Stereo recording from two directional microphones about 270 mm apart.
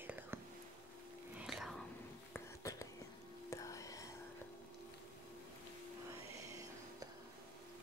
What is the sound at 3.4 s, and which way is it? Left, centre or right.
Whispering, centre.